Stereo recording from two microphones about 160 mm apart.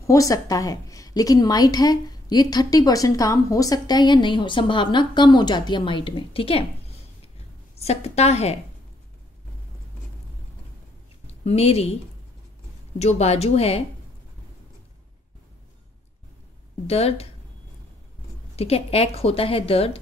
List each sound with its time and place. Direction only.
0.0 s a woman's voice: 20° left (ahead or behind); by 6.6 s 35° left (ahead or behind)
7.7 s a woman's voice: 40° left (ahead or behind)
11.2 s speech: 40° left (ahead or behind)
13.0 s a woman's voice: 40° left (ahead or behind)
16.8 s a woman's voice: 40° left (ahead or behind)
18.6 s a woman's voice: 40° left (ahead or behind)